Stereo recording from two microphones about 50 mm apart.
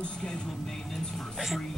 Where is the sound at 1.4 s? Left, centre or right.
Centre.